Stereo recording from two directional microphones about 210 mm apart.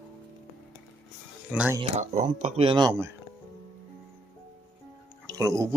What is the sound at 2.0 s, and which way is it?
Speech, 35° right (ahead or behind).